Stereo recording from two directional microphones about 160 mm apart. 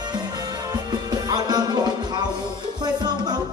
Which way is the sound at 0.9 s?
25° right (ahead or behind).